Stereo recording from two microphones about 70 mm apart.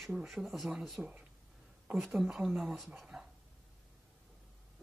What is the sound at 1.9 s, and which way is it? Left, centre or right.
Speech, centre.